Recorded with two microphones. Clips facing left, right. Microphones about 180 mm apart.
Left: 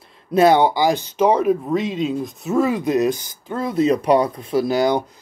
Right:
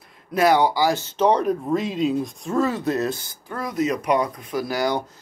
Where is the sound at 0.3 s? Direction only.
25° left (ahead or behind).